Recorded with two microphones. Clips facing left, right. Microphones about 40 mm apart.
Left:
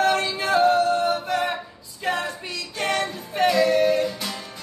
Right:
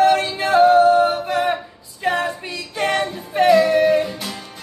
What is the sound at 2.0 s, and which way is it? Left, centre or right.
Music, centre.